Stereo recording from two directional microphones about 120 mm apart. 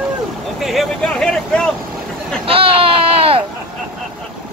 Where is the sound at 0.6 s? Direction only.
Centre (ahead or behind).